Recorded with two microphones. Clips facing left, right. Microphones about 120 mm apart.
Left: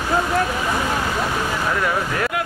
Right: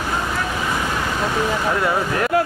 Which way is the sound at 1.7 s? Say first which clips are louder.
Right 2 dB; 20° right (ahead or behind).